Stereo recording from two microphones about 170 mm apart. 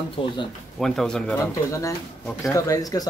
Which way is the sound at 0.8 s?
5° left (ahead or behind).